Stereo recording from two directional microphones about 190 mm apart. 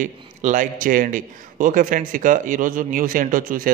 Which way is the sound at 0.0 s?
40° right (ahead or behind).